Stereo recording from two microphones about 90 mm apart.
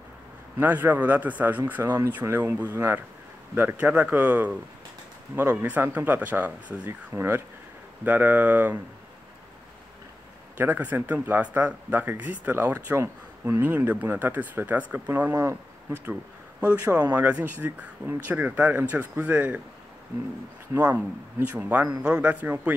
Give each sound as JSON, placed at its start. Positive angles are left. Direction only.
{"t": 0.6, "sound": "speech", "side_deg": -20}
{"t": 10.6, "sound": "speech", "side_deg": -20}
{"t": 12.8, "sound": "speech", "side_deg": -30}
{"t": 17.1, "sound": "speech", "side_deg": -20}
{"t": 20.7, "sound": "speech", "side_deg": -20}